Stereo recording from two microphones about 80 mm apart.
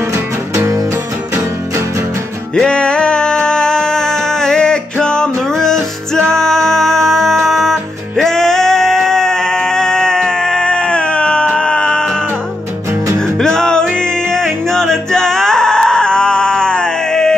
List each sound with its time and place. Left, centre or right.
2.5 s music: centre
13.4 s music: centre